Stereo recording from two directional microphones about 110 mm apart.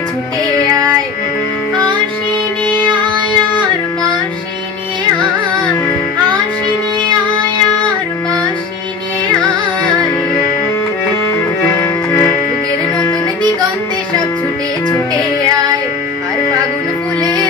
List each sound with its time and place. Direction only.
2.8 s child singing: 45° right (ahead or behind)
5.6 s music: 10° left (ahead or behind)
11.3 s music: 25° left (ahead or behind)